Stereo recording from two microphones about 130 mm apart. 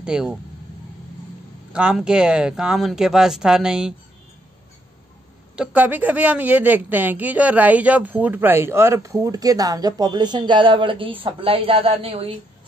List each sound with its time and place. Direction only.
0.0 s speech: 5° right (ahead or behind)
1.7 s speech: 5° right (ahead or behind)
5.6 s a woman's voice: 10° right (ahead or behind); by 12.4 s 50° right (ahead or behind)